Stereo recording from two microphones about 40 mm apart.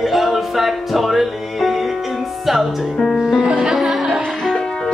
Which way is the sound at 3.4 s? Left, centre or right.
Right.